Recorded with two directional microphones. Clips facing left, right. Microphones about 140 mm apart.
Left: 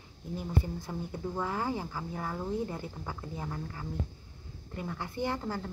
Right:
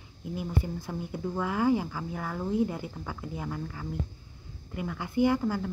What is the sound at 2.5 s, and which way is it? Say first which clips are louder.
Speech: right 8 dB; 10° right (ahead or behind).